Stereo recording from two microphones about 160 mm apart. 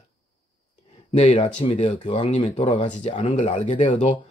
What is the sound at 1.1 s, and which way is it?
Speech, 45° left (ahead or behind).